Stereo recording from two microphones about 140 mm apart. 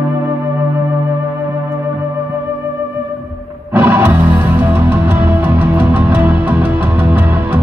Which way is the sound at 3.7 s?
15° right (ahead or behind).